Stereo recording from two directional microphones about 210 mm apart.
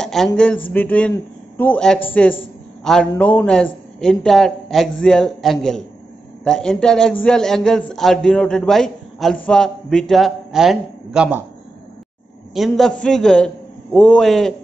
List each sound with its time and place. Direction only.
0.0 s a man's voice: centre (ahead or behind)
12.5 s a man's voice: centre (ahead or behind)